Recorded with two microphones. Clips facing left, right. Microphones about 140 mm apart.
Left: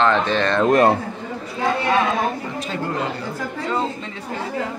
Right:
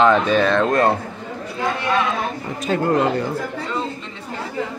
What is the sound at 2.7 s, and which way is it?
Speech, 50° right (ahead or behind).